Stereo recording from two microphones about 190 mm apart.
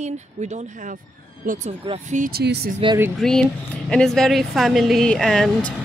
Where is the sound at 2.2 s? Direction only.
55° right (ahead or behind).